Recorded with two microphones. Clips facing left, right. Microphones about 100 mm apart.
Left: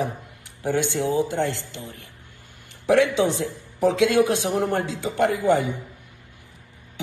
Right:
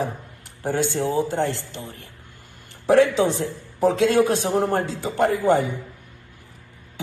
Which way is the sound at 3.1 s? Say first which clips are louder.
Right 1 dB; 35° right (ahead or behind).